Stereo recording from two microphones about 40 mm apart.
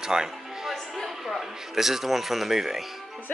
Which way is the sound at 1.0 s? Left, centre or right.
Centre.